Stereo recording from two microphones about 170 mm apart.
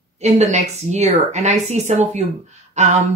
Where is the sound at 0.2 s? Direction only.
40° right (ahead or behind).